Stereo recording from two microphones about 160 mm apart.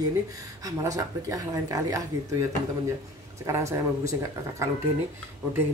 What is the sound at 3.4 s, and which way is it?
Speech, 20° right (ahead or behind).